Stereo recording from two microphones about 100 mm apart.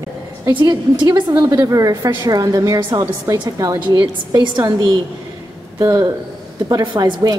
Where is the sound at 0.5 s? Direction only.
45° right (ahead or behind).